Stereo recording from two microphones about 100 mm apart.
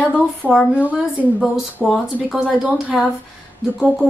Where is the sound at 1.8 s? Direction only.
Centre (ahead or behind).